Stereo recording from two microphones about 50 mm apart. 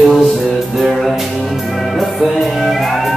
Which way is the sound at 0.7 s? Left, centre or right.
Centre.